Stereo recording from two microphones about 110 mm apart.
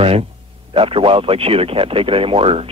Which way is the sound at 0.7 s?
55° right (ahead or behind).